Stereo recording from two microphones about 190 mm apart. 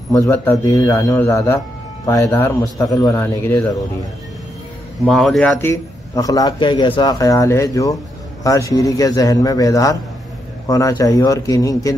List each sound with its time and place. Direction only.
0.1 s a man's voice: 15° left (ahead or behind)
5.0 s a man's voice: centre (ahead or behind); by 11.9 s 20° left (ahead or behind)